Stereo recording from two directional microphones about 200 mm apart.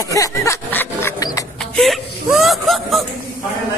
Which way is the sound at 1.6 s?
Centre (ahead or behind).